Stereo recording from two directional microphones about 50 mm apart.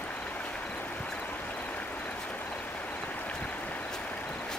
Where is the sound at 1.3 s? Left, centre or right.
Left.